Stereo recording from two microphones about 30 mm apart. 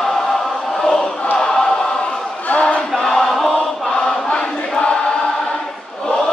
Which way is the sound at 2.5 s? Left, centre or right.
Left.